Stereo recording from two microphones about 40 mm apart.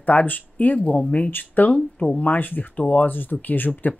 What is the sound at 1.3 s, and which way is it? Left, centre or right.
Speech, left.